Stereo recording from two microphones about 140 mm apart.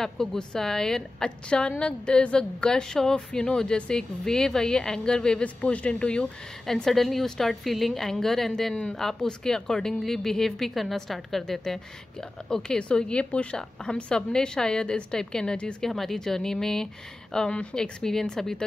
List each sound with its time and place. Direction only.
0.0 s a woman's voice: 5° left (ahead or behind)